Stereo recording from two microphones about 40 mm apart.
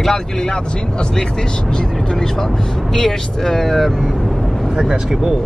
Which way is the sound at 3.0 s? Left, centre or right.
Centre.